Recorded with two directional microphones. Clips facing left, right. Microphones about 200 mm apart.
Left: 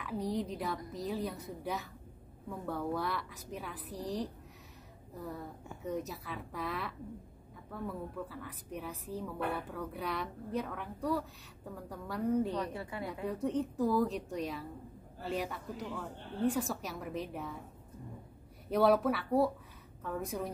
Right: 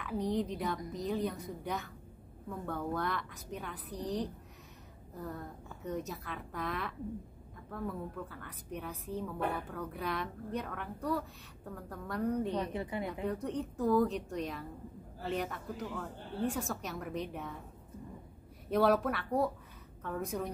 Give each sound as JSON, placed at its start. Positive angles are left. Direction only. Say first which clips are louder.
{"t": 0.0, "sound": "a woman's voice", "louder": "right 2 dB", "side_deg": 0}
{"t": 12.5, "sound": "a woman's voice", "louder": "right 2 dB", "side_deg": -20}
{"t": 13.3, "sound": "a woman's voice", "louder": "left 3 dB", "side_deg": 0}
{"t": 18.7, "sound": "a woman's voice", "louder": "left 1 dB", "side_deg": 0}